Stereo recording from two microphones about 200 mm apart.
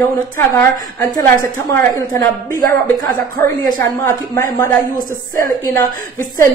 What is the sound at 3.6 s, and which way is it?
A woman's voice, 20° left (ahead or behind).